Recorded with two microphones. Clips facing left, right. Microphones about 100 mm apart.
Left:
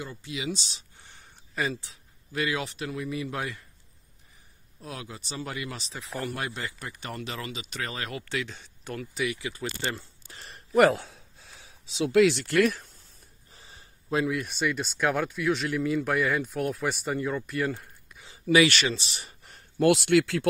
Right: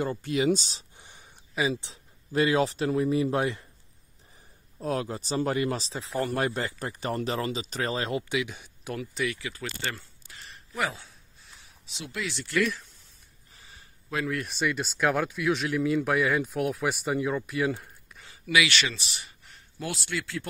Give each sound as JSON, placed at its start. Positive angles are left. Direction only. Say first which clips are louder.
{"t": 0.0, "sound": "speech", "louder": "right 9 dB", "side_deg": -50}
{"t": 0.9, "sound": "a sound", "louder": "right 1 dB", "side_deg": -15}
{"t": 1.8, "sound": "speech", "louder": "right 2 dB", "side_deg": -25}
{"t": 4.7, "sound": "speech", "louder": "right 10 dB", "side_deg": -40}
{"t": 8.3, "sound": "speech", "louder": "right 3 dB", "side_deg": -5}
{"t": 9.3, "sound": "speech", "louder": "left 2 dB", "side_deg": 20}
{"t": 10.2, "sound": "a sound", "louder": "left 1 dB", "side_deg": 35}
{"t": 10.8, "sound": "a sound", "louder": "left 11 dB", "side_deg": 80}
{"t": 12.1, "sound": "speech", "louder": "left 11 dB", "side_deg": 80}
{"t": 13.5, "sound": "a sound", "louder": "left 1 dB", "side_deg": 30}
{"t": 14.3, "sound": "speech", "louder": "even", "side_deg": 0}
{"t": 18.5, "sound": "speech", "louder": "left 4 dB", "side_deg": 40}
{"t": 19.8, "sound": "speech", "louder": "left 13 dB", "side_deg": 65}